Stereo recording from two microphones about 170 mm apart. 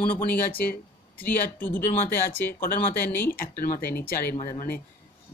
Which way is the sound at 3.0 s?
10° left (ahead or behind).